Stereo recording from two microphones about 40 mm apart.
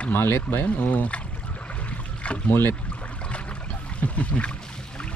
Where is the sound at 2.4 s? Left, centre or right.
Left.